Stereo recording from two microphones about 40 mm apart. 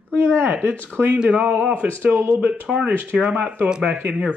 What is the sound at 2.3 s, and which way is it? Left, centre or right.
Speech, right.